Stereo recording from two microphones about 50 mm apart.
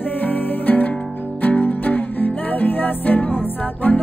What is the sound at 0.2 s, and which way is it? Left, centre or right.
Music, left.